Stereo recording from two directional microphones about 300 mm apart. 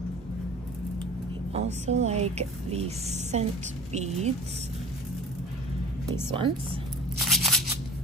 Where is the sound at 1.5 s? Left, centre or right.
Right.